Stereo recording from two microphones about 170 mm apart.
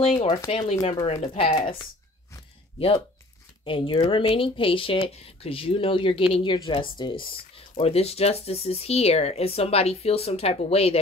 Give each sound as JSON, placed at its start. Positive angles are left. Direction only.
{"t": 0.1, "sound": "speech", "side_deg": 35}
{"t": 3.6, "sound": "speech", "side_deg": 30}